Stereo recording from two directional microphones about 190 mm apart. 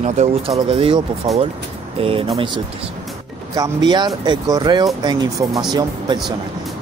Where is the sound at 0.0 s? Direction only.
35° right (ahead or behind).